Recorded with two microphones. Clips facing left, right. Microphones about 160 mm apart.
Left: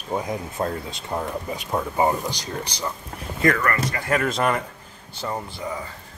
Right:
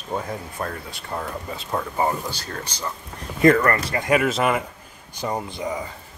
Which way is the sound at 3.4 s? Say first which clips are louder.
Right 5 dB; 25° right (ahead or behind).